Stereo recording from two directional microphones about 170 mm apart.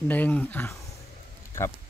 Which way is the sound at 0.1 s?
10° left (ahead or behind).